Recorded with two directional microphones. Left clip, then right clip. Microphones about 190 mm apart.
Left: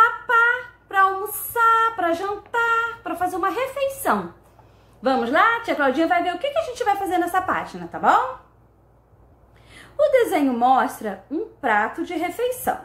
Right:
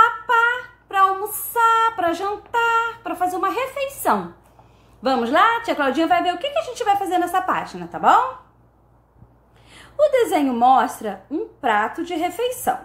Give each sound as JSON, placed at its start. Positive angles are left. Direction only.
{"t": 0.0, "sound": "female singing", "side_deg": -15}
{"t": 5.0, "sound": "a woman's voice", "side_deg": -20}
{"t": 9.7, "sound": "a woman's voice", "side_deg": -15}